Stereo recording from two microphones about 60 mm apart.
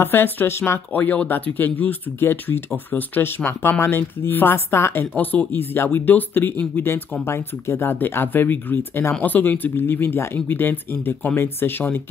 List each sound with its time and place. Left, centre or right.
0.0 s speech: left
0.9 s speech: left
5.1 s speech: left